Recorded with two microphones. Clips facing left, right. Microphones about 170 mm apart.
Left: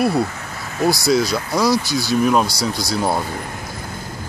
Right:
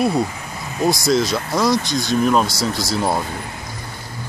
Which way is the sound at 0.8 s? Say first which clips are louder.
Left 1 dB; centre (ahead or behind).